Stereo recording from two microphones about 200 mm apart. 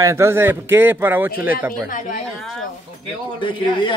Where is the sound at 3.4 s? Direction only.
25° left (ahead or behind).